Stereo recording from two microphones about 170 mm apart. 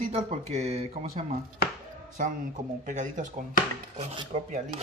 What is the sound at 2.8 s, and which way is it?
Speech, 50° right (ahead or behind).